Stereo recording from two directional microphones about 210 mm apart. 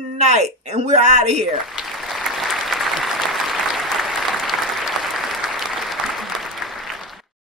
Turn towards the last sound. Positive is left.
turn(degrees=0)  # may be behind; listen again after turning